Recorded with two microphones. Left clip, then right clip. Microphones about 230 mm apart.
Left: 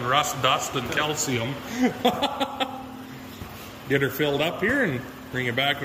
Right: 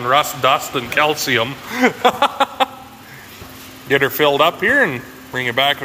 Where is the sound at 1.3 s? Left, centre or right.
Centre.